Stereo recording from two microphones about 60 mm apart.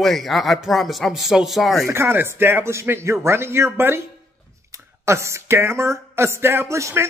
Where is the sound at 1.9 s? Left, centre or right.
Right.